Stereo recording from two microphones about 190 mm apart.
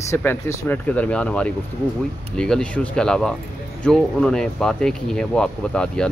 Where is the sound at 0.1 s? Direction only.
15° left (ahead or behind).